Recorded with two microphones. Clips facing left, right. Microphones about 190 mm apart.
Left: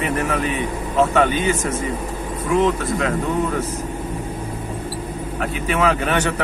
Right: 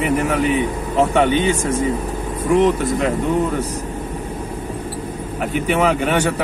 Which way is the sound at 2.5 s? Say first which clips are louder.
Right 3 dB; centre (ahead or behind).